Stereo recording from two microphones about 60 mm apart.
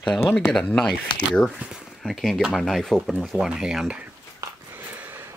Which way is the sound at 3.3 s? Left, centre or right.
Right.